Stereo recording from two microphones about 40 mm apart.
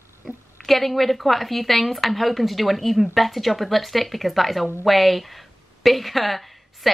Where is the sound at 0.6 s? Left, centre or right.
Centre.